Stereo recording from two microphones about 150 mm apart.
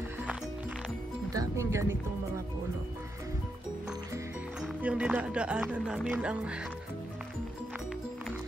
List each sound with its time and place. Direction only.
1.3 s music: 20° right (ahead or behind)
4.6 s speech: 10° right (ahead or behind)